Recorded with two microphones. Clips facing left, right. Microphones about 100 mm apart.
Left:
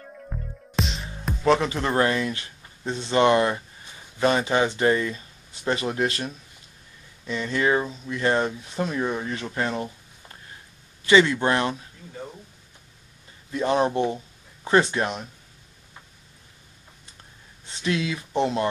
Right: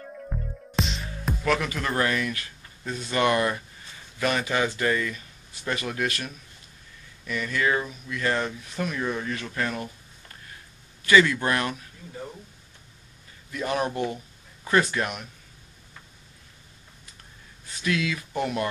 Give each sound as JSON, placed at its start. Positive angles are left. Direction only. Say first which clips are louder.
{"t": 0.0, "sound": "music", "louder": "right 2 dB", "side_deg": 0}
{"t": 1.4, "sound": "speech", "louder": "left 6 dB", "side_deg": 25}
{"t": 13.5, "sound": "speech", "louder": "left 5 dB", "side_deg": 25}
{"t": 17.6, "sound": "speech", "louder": "left 1 dB", "side_deg": 25}